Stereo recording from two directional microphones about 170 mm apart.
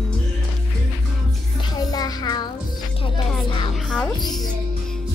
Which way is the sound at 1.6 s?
25° left (ahead or behind).